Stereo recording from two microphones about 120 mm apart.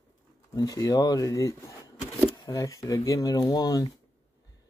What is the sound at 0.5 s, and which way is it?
Speech, 30° left (ahead or behind).